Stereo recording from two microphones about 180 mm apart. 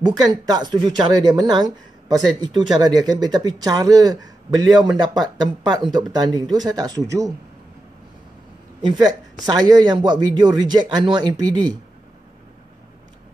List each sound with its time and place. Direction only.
0.0 s a man's voice: 20° right (ahead or behind)
8.8 s a man's voice: 20° right (ahead or behind)